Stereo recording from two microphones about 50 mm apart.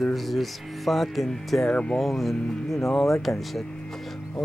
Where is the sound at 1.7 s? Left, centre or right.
Left.